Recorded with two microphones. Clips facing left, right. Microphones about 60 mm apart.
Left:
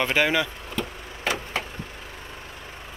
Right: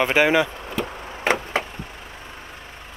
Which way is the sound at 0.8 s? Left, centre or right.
Right.